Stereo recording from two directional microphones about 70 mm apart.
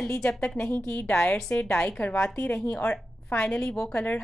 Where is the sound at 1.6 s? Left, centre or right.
Centre.